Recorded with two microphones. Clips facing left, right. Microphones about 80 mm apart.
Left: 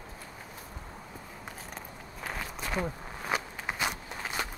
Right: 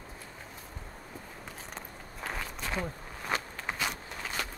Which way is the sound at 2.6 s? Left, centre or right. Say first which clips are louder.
Left 4 dB; centre.